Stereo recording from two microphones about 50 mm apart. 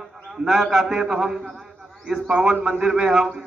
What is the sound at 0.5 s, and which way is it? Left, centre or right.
Speech, centre.